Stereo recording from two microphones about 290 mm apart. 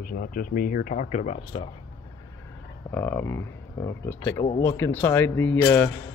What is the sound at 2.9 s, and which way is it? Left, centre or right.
Speech, centre.